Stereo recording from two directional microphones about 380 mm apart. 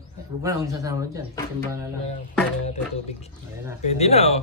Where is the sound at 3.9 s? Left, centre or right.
Centre.